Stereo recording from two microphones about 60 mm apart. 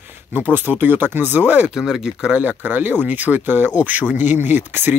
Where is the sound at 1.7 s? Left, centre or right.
Centre.